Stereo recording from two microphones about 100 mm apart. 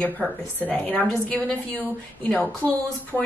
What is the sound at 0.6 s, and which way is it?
Speech, 15° left (ahead or behind).